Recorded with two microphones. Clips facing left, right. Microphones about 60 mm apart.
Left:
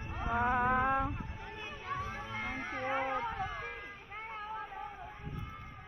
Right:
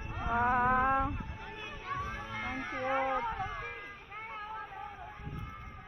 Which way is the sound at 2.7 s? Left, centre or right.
Centre.